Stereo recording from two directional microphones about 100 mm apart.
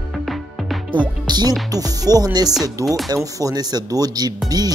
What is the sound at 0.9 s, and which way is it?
Speech, 45° right (ahead or behind).